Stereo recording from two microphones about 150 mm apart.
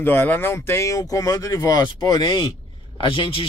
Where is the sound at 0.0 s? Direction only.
15° left (ahead or behind).